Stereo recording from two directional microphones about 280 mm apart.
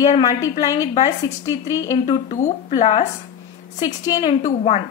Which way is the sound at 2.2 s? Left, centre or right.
Left.